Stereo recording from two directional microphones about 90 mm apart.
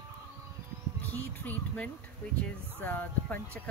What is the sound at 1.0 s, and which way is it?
Speech, 20° left (ahead or behind).